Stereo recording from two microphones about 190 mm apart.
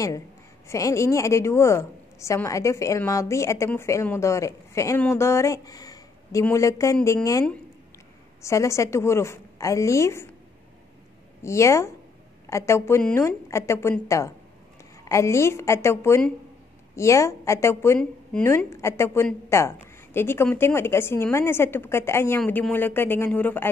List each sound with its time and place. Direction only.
0.7 s a woman's voice: 15° left (ahead or behind)
8.4 s a woman's voice: 15° left (ahead or behind)
11.4 s a woman's voice: 15° left (ahead or behind)